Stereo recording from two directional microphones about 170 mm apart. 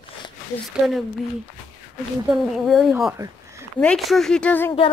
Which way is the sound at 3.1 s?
15° right (ahead or behind).